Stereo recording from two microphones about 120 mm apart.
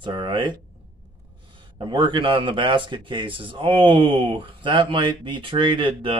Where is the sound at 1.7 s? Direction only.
45° right (ahead or behind).